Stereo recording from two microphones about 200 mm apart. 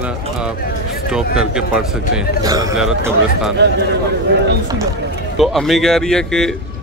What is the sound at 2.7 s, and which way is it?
Speech, 5° right (ahead or behind).